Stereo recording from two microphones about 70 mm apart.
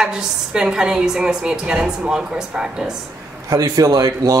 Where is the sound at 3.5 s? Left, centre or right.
Right.